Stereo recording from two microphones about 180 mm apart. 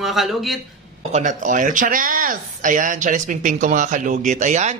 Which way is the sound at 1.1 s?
45° right (ahead or behind).